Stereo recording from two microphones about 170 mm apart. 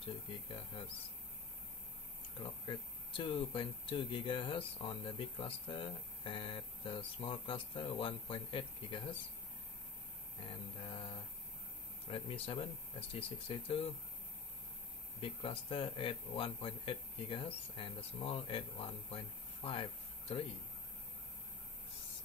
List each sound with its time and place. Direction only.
0.0 s speech: 30° left (ahead or behind)
2.4 s speech: 30° left (ahead or behind)
10.4 s speech: 30° left (ahead or behind)
15.1 s speech: 30° left (ahead or behind)